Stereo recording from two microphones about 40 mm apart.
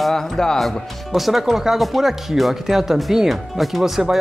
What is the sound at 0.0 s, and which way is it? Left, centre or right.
Speech, centre.